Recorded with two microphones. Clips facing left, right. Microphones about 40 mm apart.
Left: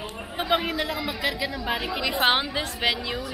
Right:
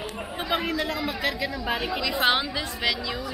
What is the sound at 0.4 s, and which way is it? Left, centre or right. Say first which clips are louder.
A woman's voice: left 2 dB; centre.